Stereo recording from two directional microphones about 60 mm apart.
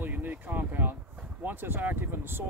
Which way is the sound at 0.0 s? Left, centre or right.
Right.